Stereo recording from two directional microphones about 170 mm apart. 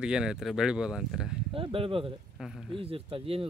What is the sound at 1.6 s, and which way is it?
Speech, 30° right (ahead or behind).